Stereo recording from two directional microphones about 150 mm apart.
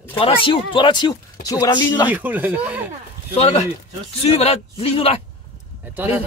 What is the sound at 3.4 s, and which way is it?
Speech, 50° left (ahead or behind).